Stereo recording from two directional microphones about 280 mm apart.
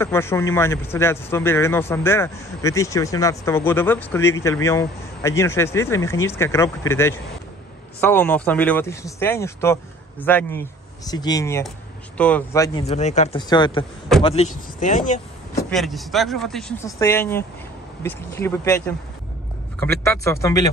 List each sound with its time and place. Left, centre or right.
0.0 s a man's voice: centre; by 15.1 s left
15.7 s a man's voice: centre